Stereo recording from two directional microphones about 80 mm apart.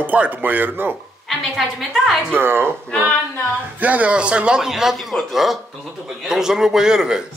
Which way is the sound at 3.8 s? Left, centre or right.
Centre.